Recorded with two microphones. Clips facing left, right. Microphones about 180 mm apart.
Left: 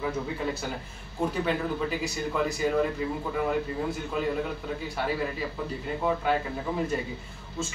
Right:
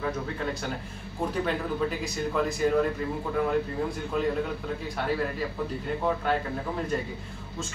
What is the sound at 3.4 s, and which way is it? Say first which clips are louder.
A man's voice: right 1 dB; 5° left (ahead or behind).